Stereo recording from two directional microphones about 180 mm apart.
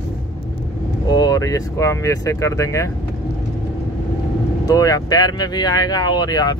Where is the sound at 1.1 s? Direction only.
20° left (ahead or behind).